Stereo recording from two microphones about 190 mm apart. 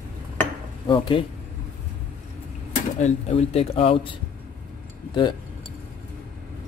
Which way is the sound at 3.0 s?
35° left (ahead or behind).